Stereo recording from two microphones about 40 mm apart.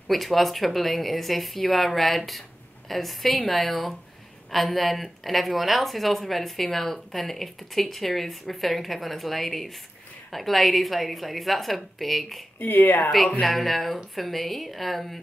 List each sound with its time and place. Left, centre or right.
0.1 s speech: centre
12.5 s speech: left
13.4 s speech: centre